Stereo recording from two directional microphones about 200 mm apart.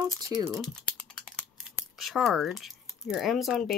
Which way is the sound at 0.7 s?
5° left (ahead or behind).